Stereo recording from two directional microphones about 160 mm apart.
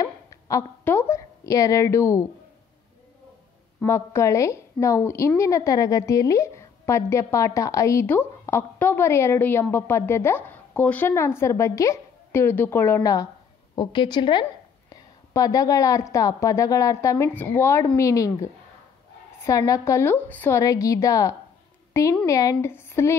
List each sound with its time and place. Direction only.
0.0 s a woman's voice: 20° left (ahead or behind)
3.8 s a woman's voice: 20° left (ahead or behind)